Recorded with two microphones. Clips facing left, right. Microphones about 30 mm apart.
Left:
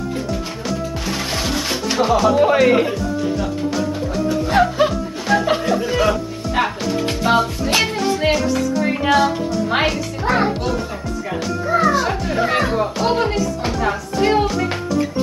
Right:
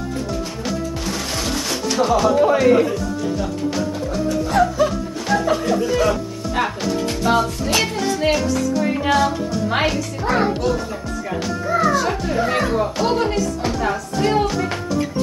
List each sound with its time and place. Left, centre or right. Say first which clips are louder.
1.3 s music: left 2 dB; centre
2.3 s speech: even; left
4.5 s music: left 2 dB; left
5.6 s speech: even; centre
7.2 s music: left 1 dB; centre
9.0 s a child's voice: left 4 dB; centre